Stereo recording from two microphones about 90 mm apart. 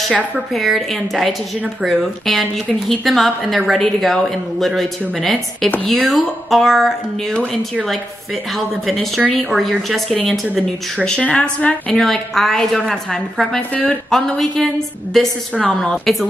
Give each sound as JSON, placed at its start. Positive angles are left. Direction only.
{"t": 0.5, "sound": "a woman's voice", "side_deg": 0}
{"t": 8.5, "sound": "a woman's voice", "side_deg": 0}
{"t": 13.6, "sound": "a woman's voice", "side_deg": 15}
{"t": 14.1, "sound": "a woman's voice", "side_deg": 5}